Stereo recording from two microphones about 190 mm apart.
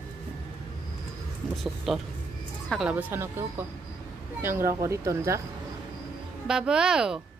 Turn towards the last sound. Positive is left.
turn(degrees=-5)  # may be behind; listen again after turning